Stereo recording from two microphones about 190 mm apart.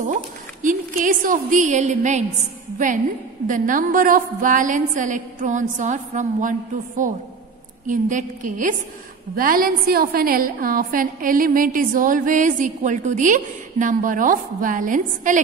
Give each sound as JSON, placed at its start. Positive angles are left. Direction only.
{"t": 0.0, "sound": "a woman's voice", "side_deg": -40}
{"t": 3.4, "sound": "a woman's voice", "side_deg": -45}